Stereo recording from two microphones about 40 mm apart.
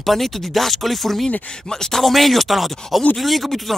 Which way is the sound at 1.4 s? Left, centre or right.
Centre.